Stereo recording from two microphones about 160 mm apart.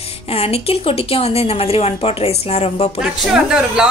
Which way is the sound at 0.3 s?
40° left (ahead or behind).